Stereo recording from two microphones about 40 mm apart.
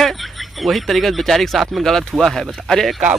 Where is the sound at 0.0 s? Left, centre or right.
Centre.